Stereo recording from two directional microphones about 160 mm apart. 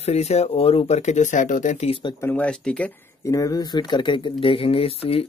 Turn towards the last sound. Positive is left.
turn(degrees=35)  # may be behind; listen again after turning